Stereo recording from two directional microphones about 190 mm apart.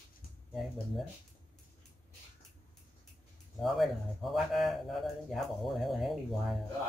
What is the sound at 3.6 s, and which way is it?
A man's voice, centre (ahead or behind).